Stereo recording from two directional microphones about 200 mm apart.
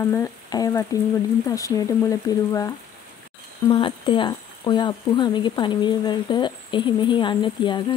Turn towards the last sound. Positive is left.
turn(degrees=20)  # may be behind; listen again after turning